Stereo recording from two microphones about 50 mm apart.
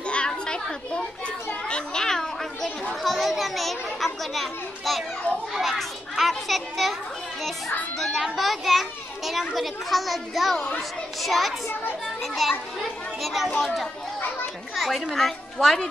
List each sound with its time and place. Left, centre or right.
0.0 s children playing: left
1.7 s a child's voice: centre
3.0 s a child's voice: centre
8.0 s a child's voice: centre